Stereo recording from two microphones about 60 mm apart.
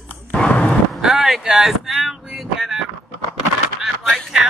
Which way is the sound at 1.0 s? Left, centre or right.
Centre.